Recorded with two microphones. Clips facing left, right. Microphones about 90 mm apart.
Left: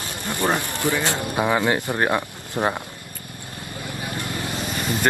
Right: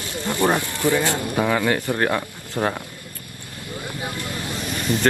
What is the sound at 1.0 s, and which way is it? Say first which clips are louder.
Speech: right 1 dB; 20° left (ahead or behind).